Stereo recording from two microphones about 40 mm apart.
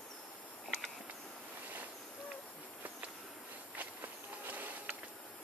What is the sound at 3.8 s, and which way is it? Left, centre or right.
Walk, right.